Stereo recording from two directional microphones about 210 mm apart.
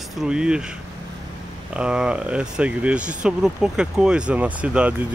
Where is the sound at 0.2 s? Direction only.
5° right (ahead or behind).